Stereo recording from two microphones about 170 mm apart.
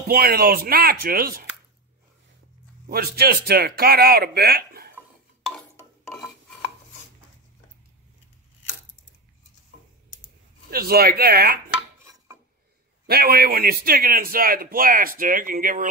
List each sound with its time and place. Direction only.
0.1 s a man's voice: 60° right (ahead or behind)
2.9 s a man's voice: 65° right (ahead or behind)
5.4 s a sound: centre (ahead or behind)
10.7 s a man's voice: 65° right (ahead or behind)
13.0 s a man's voice: 65° right (ahead or behind)